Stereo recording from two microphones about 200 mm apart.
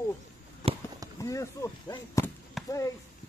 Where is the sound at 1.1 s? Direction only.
15° left (ahead or behind).